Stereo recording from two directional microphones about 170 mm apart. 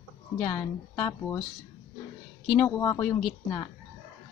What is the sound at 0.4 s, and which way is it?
A woman's voice, 10° left (ahead or behind).